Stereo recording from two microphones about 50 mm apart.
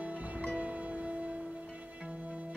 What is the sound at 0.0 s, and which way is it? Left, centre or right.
Music, right.